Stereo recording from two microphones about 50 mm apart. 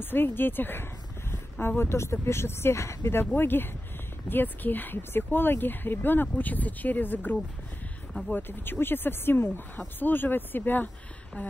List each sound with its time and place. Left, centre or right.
0.0 s speech: left
8.3 s speech: left